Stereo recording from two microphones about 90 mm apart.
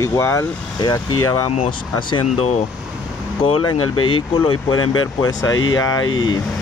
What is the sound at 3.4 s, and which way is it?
Speech, 85° left.